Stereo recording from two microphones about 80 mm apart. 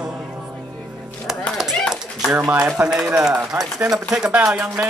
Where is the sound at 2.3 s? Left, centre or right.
Right.